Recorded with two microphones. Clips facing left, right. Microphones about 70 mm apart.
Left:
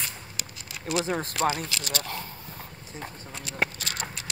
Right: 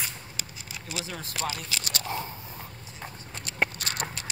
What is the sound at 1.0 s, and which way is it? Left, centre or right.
Speech, left.